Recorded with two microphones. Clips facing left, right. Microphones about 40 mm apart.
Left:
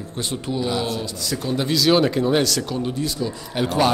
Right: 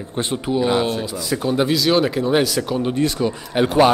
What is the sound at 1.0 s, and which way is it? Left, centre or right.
Speech, centre.